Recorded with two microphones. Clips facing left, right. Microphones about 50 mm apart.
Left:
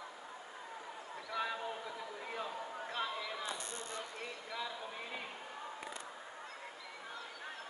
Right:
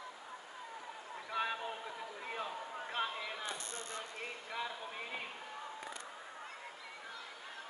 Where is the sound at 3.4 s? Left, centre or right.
Right.